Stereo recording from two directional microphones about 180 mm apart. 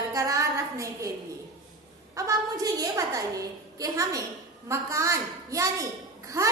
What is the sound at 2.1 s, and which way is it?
A woman's voice, 20° right (ahead or behind).